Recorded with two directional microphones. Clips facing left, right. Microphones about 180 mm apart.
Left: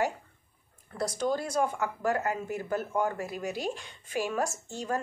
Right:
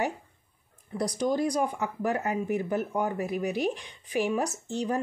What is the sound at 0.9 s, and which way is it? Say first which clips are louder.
Speech: right 3 dB; 15° right (ahead or behind).